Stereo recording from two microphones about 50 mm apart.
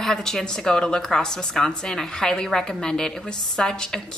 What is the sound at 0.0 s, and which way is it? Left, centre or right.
A woman's voice, centre.